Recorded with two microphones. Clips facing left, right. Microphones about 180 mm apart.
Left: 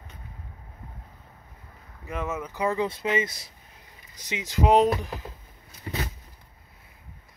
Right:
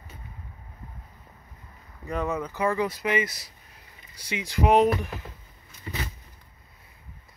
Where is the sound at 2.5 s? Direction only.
20° left (ahead or behind).